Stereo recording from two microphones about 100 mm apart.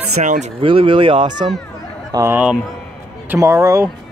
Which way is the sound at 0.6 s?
65° right (ahead or behind).